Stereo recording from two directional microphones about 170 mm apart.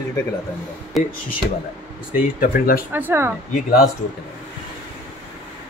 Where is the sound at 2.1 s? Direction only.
55° left (ahead or behind).